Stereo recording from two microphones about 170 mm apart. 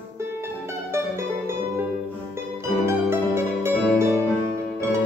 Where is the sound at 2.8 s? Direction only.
15° right (ahead or behind).